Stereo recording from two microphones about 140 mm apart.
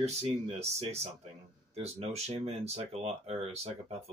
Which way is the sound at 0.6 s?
50° right (ahead or behind).